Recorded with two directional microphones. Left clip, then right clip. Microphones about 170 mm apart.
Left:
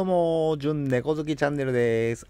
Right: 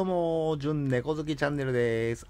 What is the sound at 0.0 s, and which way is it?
Speech, 20° left (ahead or behind).